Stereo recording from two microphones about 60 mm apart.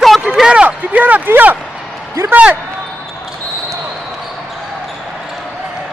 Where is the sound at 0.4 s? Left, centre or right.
Centre.